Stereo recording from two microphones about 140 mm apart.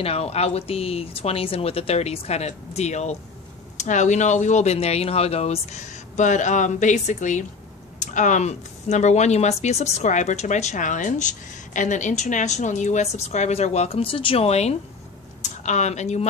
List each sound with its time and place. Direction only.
0.0 s speech: 45° left (ahead or behind)